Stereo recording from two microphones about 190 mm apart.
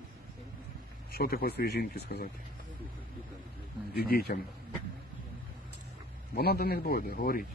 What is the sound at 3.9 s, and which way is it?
Speech, 55° left (ahead or behind).